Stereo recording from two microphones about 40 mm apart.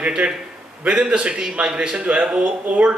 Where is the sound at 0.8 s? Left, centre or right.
Right.